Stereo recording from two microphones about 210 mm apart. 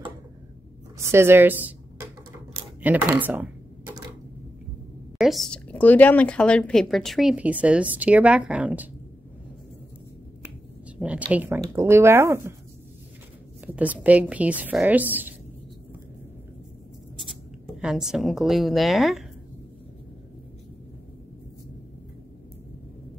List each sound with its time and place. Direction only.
0.9 s speech: 10° right (ahead or behind)
5.1 s speech: centre (ahead or behind)
11.0 s speech: 5° right (ahead or behind)
13.7 s speech: 5° right (ahead or behind)
17.6 s speech: 5° right (ahead or behind)